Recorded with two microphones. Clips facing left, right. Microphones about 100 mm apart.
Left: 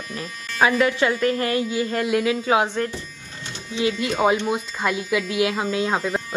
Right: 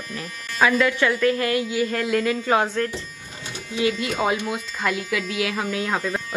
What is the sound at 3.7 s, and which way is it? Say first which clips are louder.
Speech: even; 20° left (ahead or behind).